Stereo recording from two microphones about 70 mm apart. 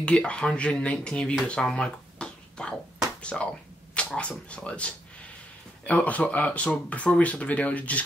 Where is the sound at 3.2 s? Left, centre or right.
Centre.